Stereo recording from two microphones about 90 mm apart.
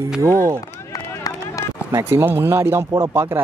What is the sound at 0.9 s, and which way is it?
Run, 40° left (ahead or behind).